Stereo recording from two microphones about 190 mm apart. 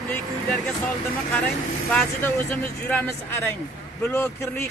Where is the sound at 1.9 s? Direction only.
10° left (ahead or behind).